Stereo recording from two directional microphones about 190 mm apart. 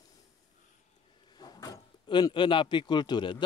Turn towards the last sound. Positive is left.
turn(degrees=25)  # may be behind; listen again after turning